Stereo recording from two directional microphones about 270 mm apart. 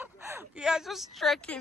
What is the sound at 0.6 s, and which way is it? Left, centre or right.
Speech, centre.